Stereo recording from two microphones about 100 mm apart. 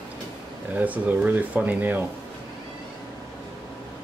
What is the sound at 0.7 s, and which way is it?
Speech, 15° right (ahead or behind).